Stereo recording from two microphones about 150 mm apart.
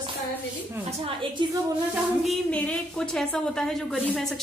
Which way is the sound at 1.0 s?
35° right (ahead or behind).